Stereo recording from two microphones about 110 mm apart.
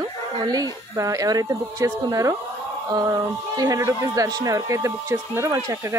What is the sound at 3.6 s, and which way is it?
A woman's voice, 30° right (ahead or behind).